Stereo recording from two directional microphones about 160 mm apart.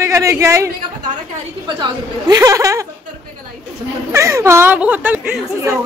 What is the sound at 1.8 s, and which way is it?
Speech, 25° right (ahead or behind).